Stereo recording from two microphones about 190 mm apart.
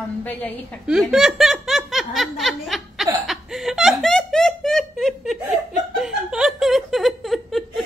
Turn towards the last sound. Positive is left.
turn(degrees=0)  # may be behind; listen again after turning